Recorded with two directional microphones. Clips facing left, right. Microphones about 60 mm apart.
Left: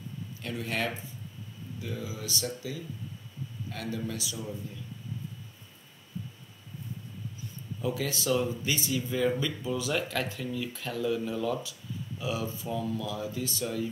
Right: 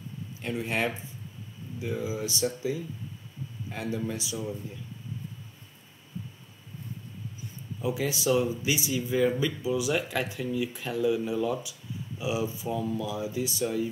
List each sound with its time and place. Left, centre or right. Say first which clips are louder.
0.4 s speech: right 3 dB; right
7.8 s speech: right 3 dB; centre